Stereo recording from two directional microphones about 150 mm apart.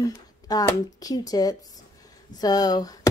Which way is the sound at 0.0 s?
25° left (ahead or behind).